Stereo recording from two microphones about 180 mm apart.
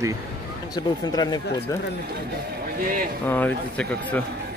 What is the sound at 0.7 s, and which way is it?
Speech, 20° left (ahead or behind).